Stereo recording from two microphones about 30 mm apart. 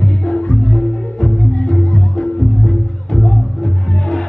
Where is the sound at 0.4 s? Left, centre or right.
Left.